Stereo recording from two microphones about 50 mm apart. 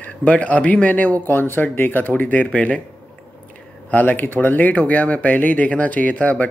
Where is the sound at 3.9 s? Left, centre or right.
Left.